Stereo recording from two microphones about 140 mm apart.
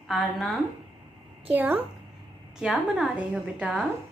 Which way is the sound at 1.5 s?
15° right (ahead or behind).